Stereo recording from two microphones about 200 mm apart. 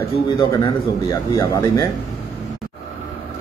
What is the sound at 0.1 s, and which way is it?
A man's voice, 20° left (ahead or behind).